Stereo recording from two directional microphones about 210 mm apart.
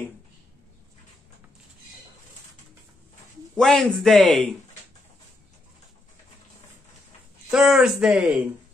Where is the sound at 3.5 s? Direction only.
5° left (ahead or behind).